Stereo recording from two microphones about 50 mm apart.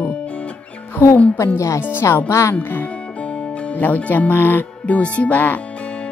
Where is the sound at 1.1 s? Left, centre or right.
Left.